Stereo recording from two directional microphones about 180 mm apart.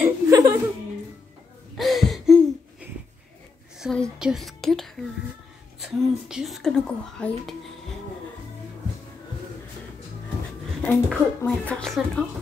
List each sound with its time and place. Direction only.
0.0 s laughter: 15° right (ahead or behind)
1.8 s a sound: centre (ahead or behind)
3.8 s speech: centre (ahead or behind)
10.8 s speech: 5° left (ahead or behind)